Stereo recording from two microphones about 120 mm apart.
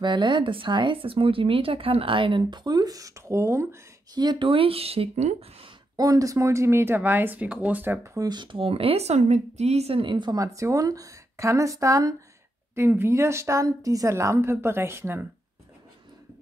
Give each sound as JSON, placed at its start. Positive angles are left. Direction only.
{"t": 0.0, "sound": "speech", "side_deg": -40}
{"t": 4.1, "sound": "speech", "side_deg": -35}
{"t": 5.9, "sound": "speech", "side_deg": -30}
{"t": 8.3, "sound": "speech", "side_deg": -40}